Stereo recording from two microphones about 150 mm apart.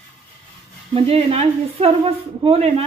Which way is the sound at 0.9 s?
40° right (ahead or behind).